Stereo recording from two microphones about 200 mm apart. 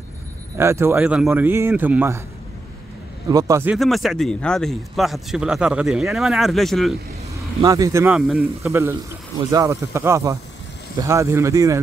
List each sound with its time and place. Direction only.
0.6 s a man's voice: 10° right (ahead or behind)
3.3 s a man's voice: 15° right (ahead or behind)
3.7 s speech: centre (ahead or behind)
7.6 s a man's voice: 15° right (ahead or behind)